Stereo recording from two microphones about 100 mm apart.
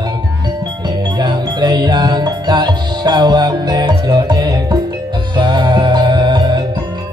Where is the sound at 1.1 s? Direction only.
45° right (ahead or behind).